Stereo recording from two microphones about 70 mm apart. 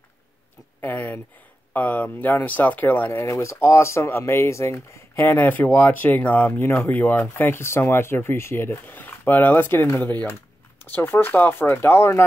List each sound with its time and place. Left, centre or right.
0.8 s speech: left
3.2 s speech: left